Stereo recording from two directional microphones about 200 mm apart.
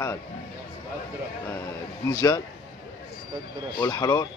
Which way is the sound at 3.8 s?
20° left (ahead or behind).